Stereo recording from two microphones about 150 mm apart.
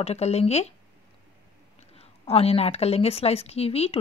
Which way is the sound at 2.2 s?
40° left (ahead or behind).